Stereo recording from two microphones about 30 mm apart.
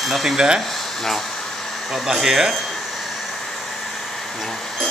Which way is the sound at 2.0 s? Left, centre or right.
Centre.